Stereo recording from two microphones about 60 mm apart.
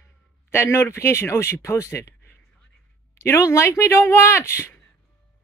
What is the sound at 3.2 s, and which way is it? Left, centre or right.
Speech, left.